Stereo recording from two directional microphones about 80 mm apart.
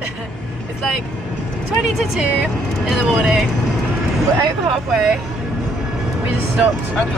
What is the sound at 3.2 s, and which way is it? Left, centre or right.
Speech, centre.